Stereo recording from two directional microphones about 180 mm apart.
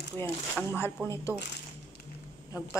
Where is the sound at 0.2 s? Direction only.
15° left (ahead or behind).